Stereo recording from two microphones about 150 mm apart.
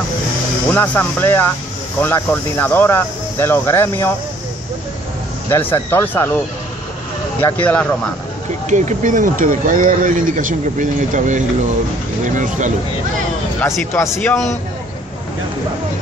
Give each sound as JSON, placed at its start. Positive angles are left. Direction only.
{"t": 0.7, "sound": "speech", "side_deg": 10}
{"t": 5.5, "sound": "speech", "side_deg": 15}
{"t": 8.6, "sound": "speech", "side_deg": -55}
{"t": 13.6, "sound": "speech", "side_deg": 20}